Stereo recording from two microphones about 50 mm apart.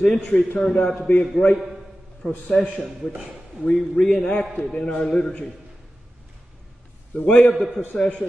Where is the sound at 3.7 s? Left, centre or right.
Centre.